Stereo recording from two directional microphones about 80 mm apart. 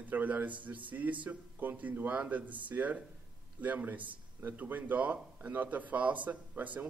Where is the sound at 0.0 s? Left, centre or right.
Right.